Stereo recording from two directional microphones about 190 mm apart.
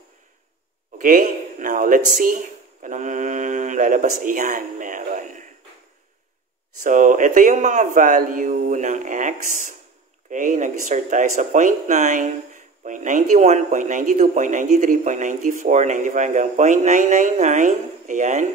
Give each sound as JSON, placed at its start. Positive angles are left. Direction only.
{"t": 0.9, "sound": "a man's voice", "side_deg": -45}
{"t": 6.8, "sound": "a man's voice", "side_deg": -45}
{"t": 10.3, "sound": "speech", "side_deg": -40}